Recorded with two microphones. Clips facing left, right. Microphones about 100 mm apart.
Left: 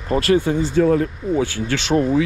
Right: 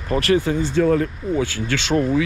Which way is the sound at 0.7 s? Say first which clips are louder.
Left 1 dB; 35° left (ahead or behind).